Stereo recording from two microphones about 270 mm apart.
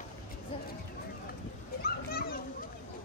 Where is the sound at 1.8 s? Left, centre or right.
Left.